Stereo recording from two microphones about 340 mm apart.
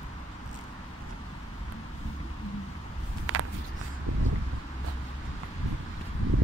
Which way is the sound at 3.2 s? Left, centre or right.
Right.